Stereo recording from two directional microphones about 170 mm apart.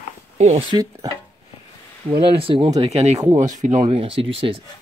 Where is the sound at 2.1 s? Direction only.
30° right (ahead or behind); by 3.8 s 45° right (ahead or behind).